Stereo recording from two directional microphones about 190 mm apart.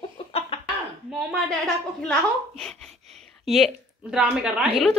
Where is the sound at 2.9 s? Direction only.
35° right (ahead or behind).